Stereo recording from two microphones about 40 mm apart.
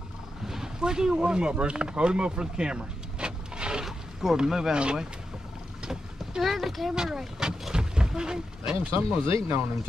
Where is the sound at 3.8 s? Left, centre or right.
Centre.